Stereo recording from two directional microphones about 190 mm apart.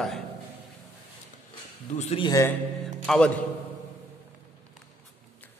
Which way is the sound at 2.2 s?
15° left (ahead or behind).